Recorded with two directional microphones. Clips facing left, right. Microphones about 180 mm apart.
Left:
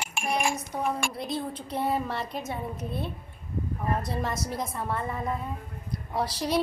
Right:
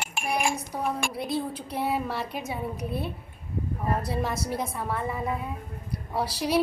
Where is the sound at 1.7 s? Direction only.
5° right (ahead or behind).